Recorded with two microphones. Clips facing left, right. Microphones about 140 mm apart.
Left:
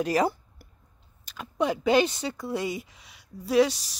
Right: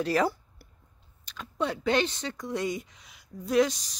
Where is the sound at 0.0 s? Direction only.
15° left (ahead or behind).